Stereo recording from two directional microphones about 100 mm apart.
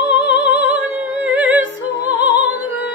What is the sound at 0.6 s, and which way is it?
Music, 15° right (ahead or behind).